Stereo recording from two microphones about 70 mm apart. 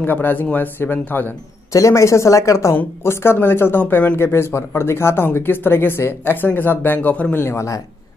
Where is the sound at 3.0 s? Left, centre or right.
Left.